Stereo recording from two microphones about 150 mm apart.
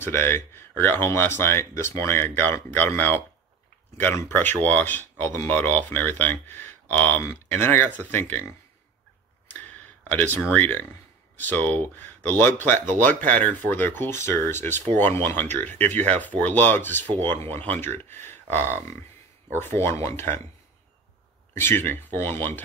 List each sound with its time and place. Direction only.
0.0 s speech: 15° left (ahead or behind)
10.0 s speech: 10° left (ahead or behind)
21.5 s speech: 15° left (ahead or behind)